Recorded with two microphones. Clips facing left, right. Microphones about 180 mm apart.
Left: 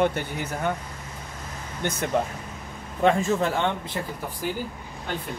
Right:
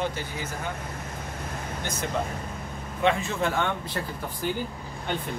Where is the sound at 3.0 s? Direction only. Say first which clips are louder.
Left 4 dB; 40° left (ahead or behind).